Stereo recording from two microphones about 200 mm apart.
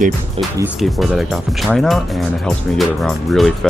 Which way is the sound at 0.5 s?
5° right (ahead or behind).